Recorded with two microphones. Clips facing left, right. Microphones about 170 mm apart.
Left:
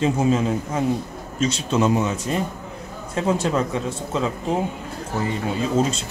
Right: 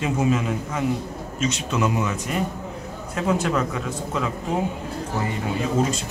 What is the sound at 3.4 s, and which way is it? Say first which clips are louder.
Speech: left 2 dB; 30° left (ahead or behind).